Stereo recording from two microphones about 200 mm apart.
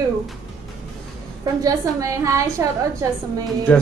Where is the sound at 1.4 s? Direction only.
20° right (ahead or behind).